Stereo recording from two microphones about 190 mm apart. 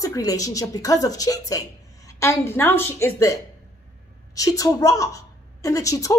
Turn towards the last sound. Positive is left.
turn(degrees=15)  # may be behind; listen again after turning